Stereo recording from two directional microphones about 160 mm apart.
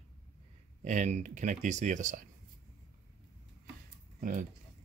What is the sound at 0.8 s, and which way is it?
Speech, 50° right (ahead or behind).